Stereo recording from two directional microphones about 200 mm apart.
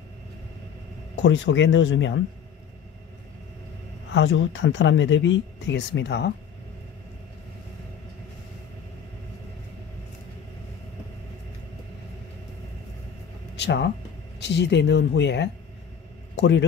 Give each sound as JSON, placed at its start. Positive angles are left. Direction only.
{"t": 1.1, "sound": "speech", "side_deg": 65}
{"t": 4.1, "sound": "speech", "side_deg": 65}
{"t": 13.6, "sound": "a sound", "side_deg": 60}
{"t": 14.4, "sound": "a man's voice", "side_deg": 60}